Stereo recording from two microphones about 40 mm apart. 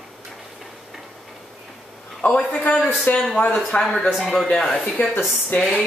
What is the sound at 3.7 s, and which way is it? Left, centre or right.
Speech, left.